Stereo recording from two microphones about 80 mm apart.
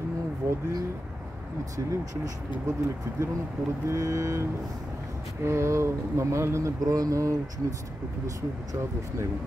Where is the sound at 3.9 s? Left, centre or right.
Right.